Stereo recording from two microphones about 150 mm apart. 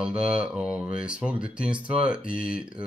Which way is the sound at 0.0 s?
5° right (ahead or behind).